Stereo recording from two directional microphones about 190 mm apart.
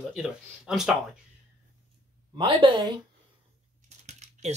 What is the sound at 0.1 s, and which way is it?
Speech, centre (ahead or behind).